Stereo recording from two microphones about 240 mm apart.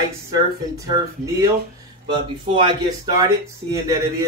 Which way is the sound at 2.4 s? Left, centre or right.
Centre.